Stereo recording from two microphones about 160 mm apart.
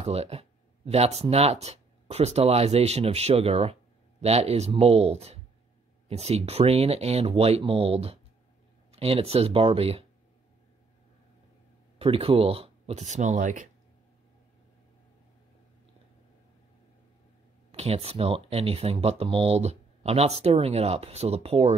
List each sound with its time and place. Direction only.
0.0 s speech: 40° right (ahead or behind)
12.0 s speech: 35° right (ahead or behind); by 13.7 s 50° right (ahead or behind)
17.6 s speech: 40° right (ahead or behind)